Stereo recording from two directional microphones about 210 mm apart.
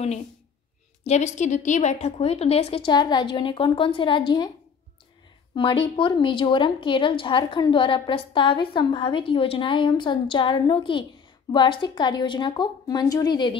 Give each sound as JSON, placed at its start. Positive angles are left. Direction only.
{"t": 1.0, "sound": "speech", "side_deg": 30}
{"t": 5.5, "sound": "speech", "side_deg": 25}